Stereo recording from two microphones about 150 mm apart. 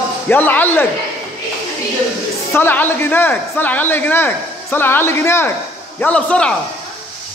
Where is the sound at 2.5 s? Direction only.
15° left (ahead or behind).